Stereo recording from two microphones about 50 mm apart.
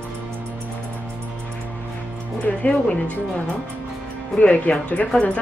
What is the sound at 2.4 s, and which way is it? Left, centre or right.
Speech, left.